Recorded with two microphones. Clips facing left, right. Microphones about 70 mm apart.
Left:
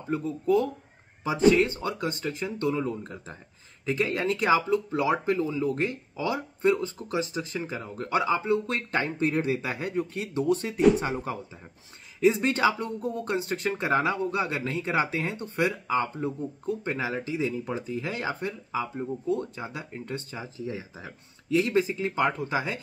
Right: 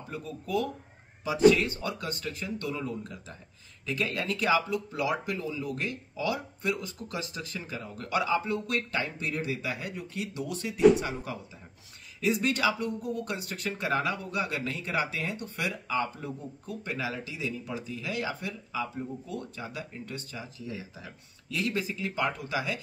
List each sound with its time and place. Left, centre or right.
0.1 s speech: left